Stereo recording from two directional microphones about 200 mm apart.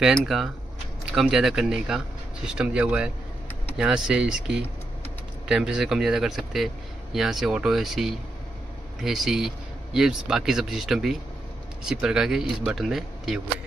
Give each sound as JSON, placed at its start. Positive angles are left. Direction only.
{"t": 0.0, "sound": "speech", "side_deg": 0}